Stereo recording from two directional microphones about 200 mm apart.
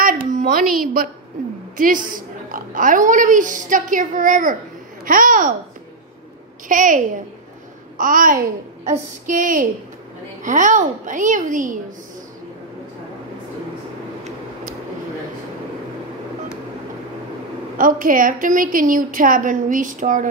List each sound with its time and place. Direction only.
0.0 s a sound: 40° right (ahead or behind)
1.8 s a woman's voice: 45° right (ahead or behind)
6.7 s a woman's voice: 40° right (ahead or behind)
8.0 s a woman's voice: 40° right (ahead or behind)
17.7 s a woman's voice: 45° right (ahead or behind)